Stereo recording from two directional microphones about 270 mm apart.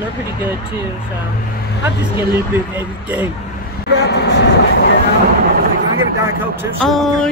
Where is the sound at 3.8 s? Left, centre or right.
Left.